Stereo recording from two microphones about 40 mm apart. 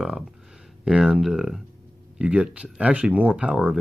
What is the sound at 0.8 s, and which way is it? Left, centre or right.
Speech, centre.